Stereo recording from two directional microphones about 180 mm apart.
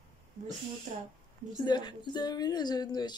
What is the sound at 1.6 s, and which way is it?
Speech, 25° left (ahead or behind).